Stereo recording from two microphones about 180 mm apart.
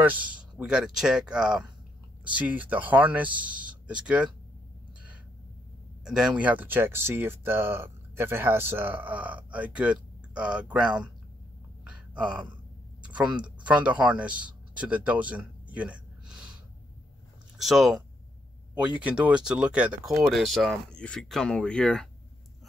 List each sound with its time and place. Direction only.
0.0 s speech: 10° right (ahead or behind)
6.0 s speech: 5° right (ahead or behind)
12.1 s speech: 5° right (ahead or behind)
13.7 s speech: 5° right (ahead or behind)
17.6 s speech: centre (ahead or behind)